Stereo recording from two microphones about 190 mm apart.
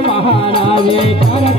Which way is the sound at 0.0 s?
30° left (ahead or behind).